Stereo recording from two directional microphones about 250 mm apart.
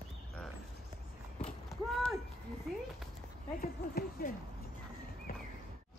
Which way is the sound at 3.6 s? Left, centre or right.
Left.